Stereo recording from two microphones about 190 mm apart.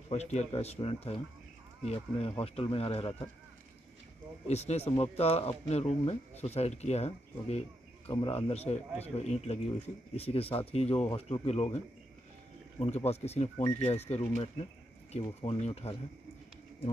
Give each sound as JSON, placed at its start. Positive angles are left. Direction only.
{"t": 0.1, "sound": "speech", "side_deg": 35}
{"t": 4.5, "sound": "speech", "side_deg": 35}